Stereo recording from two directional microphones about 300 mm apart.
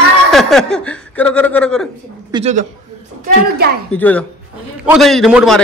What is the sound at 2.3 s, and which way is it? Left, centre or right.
Speech, right.